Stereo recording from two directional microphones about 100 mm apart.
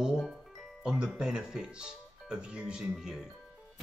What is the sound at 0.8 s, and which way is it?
Speech, 5° right (ahead or behind).